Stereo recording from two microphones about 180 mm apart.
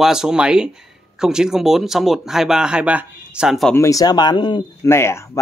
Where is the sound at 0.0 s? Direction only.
5° right (ahead or behind).